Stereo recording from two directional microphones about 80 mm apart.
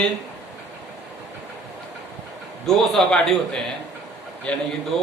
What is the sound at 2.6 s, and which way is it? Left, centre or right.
A man's voice, centre.